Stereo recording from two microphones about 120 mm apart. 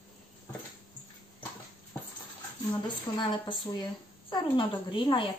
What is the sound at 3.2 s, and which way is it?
A woman's voice, 40° left (ahead or behind).